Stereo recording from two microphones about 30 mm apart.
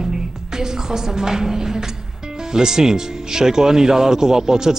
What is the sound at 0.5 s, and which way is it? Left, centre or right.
Speech, centre.